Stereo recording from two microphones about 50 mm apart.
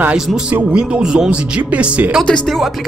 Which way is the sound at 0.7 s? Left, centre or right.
Centre.